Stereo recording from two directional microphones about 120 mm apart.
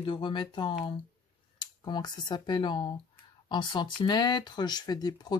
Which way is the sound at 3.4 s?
40° left (ahead or behind).